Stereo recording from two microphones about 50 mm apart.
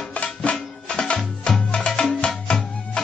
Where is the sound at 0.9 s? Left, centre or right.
Centre.